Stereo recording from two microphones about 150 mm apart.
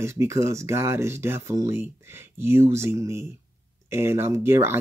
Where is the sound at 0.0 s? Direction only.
15° right (ahead or behind).